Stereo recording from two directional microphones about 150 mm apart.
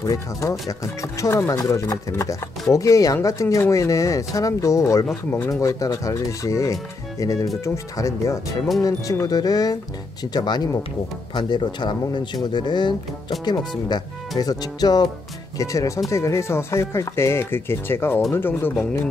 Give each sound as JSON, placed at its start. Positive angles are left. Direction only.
{"t": 0.0, "sound": "speech", "side_deg": 20}